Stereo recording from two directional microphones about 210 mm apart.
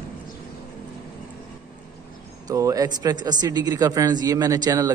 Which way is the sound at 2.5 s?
15° right (ahead or behind).